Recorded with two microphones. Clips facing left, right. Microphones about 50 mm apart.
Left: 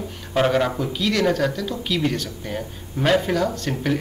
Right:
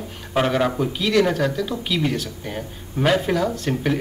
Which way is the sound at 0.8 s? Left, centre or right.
Centre.